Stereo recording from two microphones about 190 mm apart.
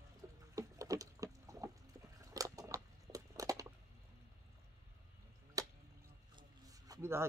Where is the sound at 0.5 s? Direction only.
15° right (ahead or behind).